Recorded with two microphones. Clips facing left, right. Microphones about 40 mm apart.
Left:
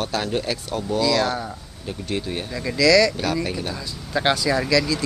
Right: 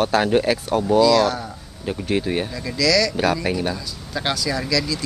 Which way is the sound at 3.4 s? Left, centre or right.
Centre.